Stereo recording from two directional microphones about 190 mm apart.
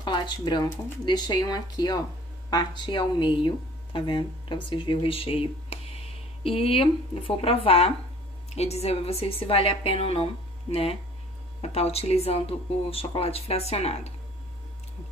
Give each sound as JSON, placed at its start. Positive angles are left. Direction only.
{"t": 0.0, "sound": "speech", "side_deg": 25}